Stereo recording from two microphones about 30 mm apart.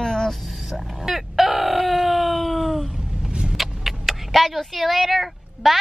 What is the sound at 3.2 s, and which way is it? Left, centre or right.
Vehicle, right.